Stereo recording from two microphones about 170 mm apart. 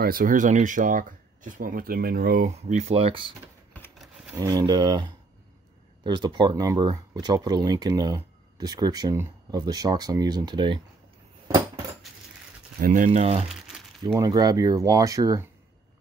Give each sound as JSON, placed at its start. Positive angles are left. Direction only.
{"t": 0.0, "sound": "speech", "side_deg": -55}
{"t": 4.4, "sound": "speech", "side_deg": -20}
{"t": 12.8, "sound": "speech", "side_deg": -50}
{"t": 13.5, "sound": "crumpling", "side_deg": 0}
{"t": 14.0, "sound": "speech", "side_deg": -20}